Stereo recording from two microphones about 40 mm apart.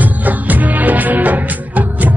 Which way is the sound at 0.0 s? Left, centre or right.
Right.